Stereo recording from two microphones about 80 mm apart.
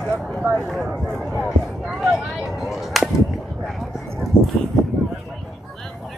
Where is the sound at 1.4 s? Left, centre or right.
Centre.